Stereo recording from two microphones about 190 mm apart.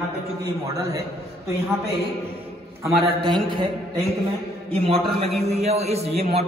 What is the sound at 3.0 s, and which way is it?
Speech, 25° right (ahead or behind).